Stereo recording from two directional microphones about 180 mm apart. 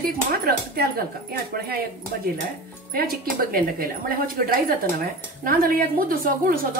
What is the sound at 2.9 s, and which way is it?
A woman's voice, 55° right (ahead or behind).